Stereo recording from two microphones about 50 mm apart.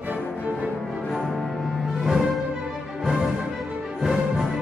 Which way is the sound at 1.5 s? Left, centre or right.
Centre.